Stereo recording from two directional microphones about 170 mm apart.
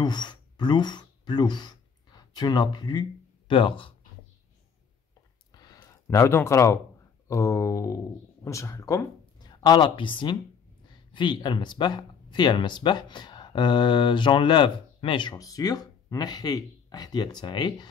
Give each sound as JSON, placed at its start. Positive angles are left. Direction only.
{"t": 0.0, "sound": "speech", "side_deg": 25}
{"t": 5.5, "sound": "a sound", "side_deg": 25}
{"t": 7.2, "sound": "speech", "side_deg": 20}